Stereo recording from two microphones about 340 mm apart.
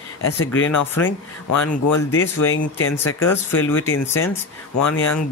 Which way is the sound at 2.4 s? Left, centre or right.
Left.